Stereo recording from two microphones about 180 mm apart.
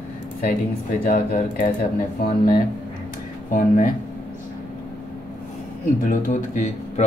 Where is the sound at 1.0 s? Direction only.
50° left (ahead or behind).